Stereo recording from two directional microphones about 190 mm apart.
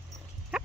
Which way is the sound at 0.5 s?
Centre (ahead or behind).